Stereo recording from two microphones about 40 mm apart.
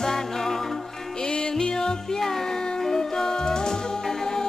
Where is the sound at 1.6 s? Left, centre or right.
Centre.